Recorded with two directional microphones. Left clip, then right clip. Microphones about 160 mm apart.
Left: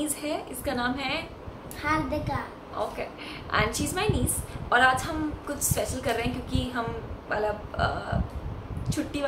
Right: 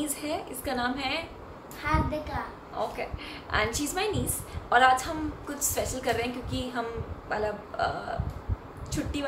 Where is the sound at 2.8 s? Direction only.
Centre (ahead or behind).